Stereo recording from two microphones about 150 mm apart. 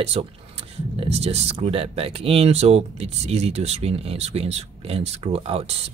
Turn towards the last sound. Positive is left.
turn(degrees=-40)  # may be behind; listen again after turning